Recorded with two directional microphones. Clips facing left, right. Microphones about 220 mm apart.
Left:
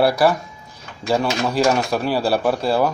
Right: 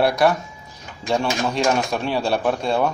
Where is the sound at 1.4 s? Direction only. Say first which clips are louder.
Left 4 dB; centre (ahead or behind).